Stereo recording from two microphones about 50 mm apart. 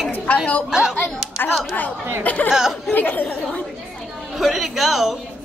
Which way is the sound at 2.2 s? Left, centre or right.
Left.